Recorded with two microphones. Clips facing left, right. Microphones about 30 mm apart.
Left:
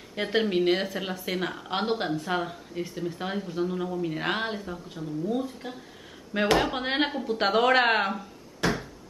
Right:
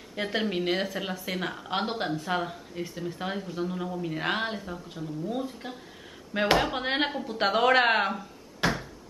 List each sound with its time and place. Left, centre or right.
0.1 s speech: centre
8.6 s cupboard open or close: centre